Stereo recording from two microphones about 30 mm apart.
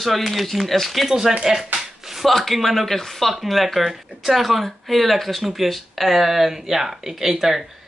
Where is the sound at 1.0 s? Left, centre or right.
Centre.